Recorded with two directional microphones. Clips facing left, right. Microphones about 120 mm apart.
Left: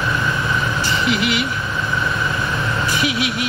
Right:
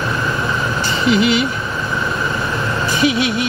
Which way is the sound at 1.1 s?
25° right (ahead or behind).